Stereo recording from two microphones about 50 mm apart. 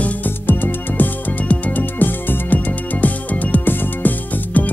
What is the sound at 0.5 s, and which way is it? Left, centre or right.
Music, left.